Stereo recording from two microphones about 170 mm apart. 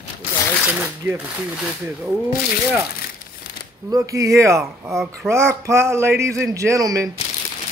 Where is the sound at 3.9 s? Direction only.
20° right (ahead or behind).